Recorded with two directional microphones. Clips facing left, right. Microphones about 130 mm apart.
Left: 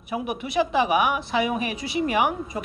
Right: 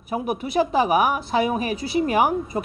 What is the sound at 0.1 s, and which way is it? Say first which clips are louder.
Speech: right 3 dB; 40° right (ahead or behind).